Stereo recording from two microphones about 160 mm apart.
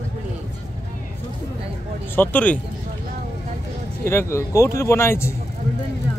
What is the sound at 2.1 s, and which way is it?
Speech, 10° left (ahead or behind).